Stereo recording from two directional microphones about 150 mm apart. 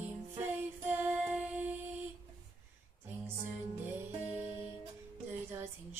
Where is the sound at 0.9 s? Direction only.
10° right (ahead or behind).